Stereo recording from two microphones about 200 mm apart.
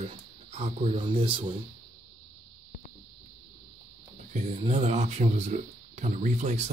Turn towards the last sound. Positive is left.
turn(degrees=-35)  # may be behind; listen again after turning